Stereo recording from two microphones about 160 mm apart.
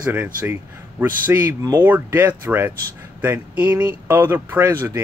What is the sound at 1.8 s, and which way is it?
Speech, 10° right (ahead or behind).